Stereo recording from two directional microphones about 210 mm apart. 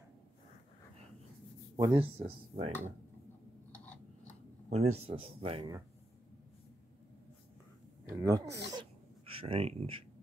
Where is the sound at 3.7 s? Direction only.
5° left (ahead or behind).